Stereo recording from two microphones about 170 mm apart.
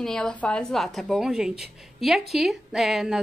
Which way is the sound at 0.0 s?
5° left (ahead or behind).